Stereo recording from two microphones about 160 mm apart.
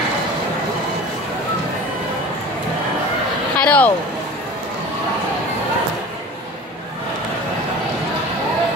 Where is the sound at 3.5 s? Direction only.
10° left (ahead or behind).